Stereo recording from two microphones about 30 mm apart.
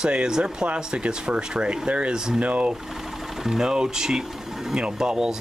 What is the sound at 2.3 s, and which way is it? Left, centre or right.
Speech, right.